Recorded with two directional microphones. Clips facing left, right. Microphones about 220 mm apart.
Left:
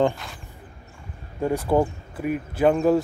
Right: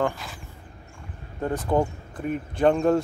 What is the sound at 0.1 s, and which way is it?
Speech, centre (ahead or behind).